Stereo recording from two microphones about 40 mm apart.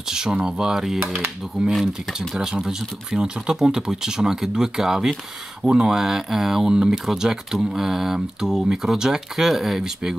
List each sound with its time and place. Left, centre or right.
0.1 s speech: centre